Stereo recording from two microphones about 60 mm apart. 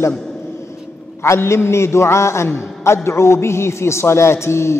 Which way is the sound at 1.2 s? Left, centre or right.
Left.